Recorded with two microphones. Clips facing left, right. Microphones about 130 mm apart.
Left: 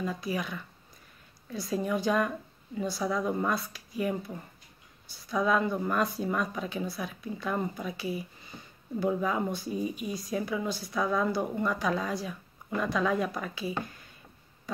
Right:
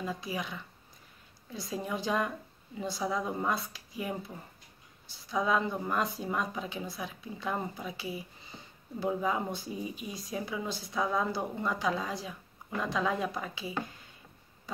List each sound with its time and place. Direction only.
0.0 s a woman's voice: 20° right (ahead or behind)
5.3 s a woman's voice: 20° right (ahead or behind)